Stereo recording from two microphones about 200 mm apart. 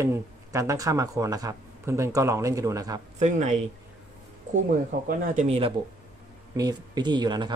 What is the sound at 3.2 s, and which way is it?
Speech, 35° right (ahead or behind).